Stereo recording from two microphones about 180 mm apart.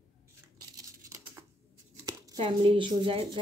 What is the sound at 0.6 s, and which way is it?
Tearing, 15° right (ahead or behind).